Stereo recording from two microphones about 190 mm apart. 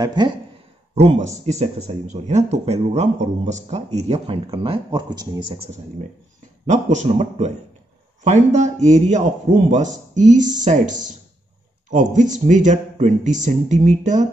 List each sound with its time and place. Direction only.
0.0 s speech: 20° right (ahead or behind)
0.9 s speech: 35° right (ahead or behind)
6.6 s speech: 40° right (ahead or behind)